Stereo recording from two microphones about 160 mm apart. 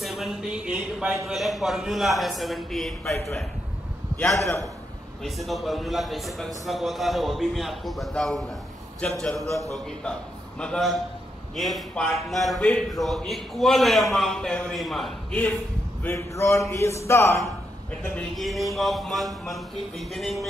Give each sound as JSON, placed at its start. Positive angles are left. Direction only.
{"t": 0.0, "sound": "speech", "side_deg": 0}
{"t": 4.2, "sound": "speech", "side_deg": 0}
{"t": 10.6, "sound": "speech", "side_deg": 5}
{"t": 16.0, "sound": "a man's voice", "side_deg": 15}
{"t": 18.1, "sound": "speech", "side_deg": 0}